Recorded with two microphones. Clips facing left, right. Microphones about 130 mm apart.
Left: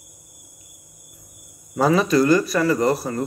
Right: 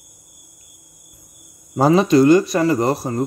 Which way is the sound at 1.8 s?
30° right (ahead or behind).